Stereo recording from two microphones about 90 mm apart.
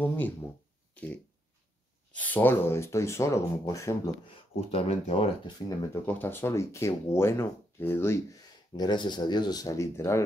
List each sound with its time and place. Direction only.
0.0 s a sound: 20° left (ahead or behind)
0.9 s dog: 15° left (ahead or behind)
2.1 s speech: 20° left (ahead or behind); by 4.1 s 35° left (ahead or behind)
4.6 s speech: 90° left
6.0 s speech: 25° left (ahead or behind)
8.3 s speech: 50° left (ahead or behind); by 10.2 s 35° left (ahead or behind)